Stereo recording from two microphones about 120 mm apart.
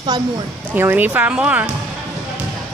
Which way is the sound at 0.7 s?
15° right (ahead or behind).